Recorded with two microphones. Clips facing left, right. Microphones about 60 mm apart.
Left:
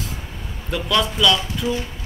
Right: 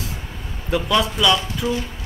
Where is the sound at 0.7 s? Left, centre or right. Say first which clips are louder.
Right 2 dB; centre.